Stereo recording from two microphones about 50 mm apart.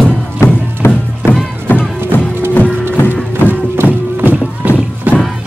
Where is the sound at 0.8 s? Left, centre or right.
Left.